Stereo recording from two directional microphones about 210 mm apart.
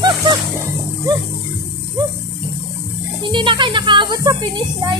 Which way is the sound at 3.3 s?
25° right (ahead or behind).